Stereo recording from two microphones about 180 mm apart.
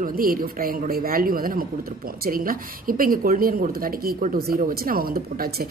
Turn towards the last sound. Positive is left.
turn(degrees=-55)  # may be behind; listen again after turning